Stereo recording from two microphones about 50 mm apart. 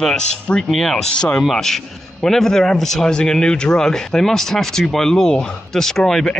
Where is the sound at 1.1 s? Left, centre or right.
Centre.